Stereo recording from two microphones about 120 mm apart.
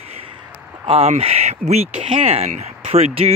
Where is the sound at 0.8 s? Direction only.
55° right (ahead or behind).